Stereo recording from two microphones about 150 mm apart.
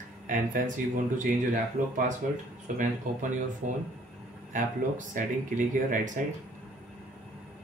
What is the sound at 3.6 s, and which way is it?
Speech, 60° right (ahead or behind).